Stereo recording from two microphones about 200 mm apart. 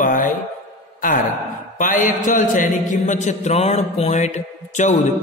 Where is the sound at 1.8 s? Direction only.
40° left (ahead or behind).